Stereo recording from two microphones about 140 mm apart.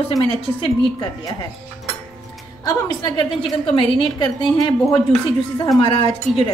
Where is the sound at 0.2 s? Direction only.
45° left (ahead or behind).